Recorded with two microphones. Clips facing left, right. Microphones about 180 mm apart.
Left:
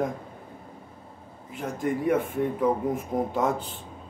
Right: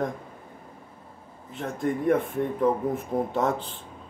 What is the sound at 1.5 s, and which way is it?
Speech, 5° left (ahead or behind).